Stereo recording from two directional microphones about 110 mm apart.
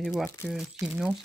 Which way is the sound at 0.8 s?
25° right (ahead or behind).